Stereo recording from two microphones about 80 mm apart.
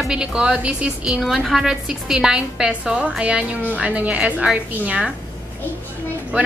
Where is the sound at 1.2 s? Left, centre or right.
Centre.